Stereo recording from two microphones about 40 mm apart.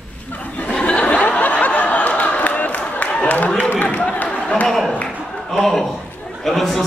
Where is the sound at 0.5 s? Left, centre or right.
Left.